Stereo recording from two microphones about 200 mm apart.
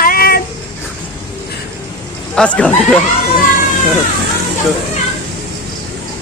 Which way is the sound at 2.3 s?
5° left (ahead or behind).